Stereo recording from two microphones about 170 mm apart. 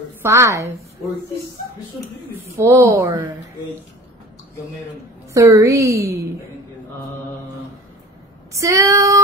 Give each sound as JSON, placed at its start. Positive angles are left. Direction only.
{"t": 0.2, "sound": "a woman's voice", "side_deg": -15}
{"t": 2.6, "sound": "a woman's voice", "side_deg": -15}
{"t": 5.3, "sound": "a woman's voice", "side_deg": -20}
{"t": 8.5, "sound": "female singing", "side_deg": -20}